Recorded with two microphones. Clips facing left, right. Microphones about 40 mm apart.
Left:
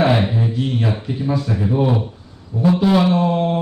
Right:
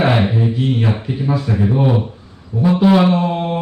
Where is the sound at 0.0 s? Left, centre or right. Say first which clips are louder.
Right 1 dB; centre.